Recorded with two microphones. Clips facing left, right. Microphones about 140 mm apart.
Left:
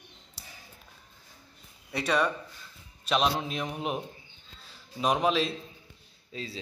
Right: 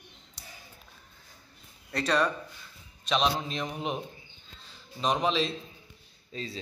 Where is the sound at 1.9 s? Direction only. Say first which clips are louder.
Even; 5° left (ahead or behind).